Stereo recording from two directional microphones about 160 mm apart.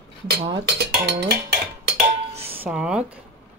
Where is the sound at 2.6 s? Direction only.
5° right (ahead or behind).